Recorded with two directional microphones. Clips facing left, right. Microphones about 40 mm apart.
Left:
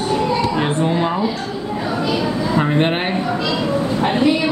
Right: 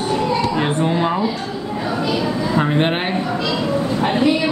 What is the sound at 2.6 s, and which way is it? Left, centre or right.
Speech, centre.